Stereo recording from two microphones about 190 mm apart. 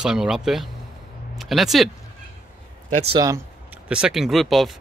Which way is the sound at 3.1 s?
15° right (ahead or behind).